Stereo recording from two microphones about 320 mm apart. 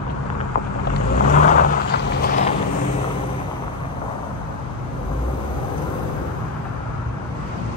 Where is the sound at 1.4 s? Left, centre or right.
Left.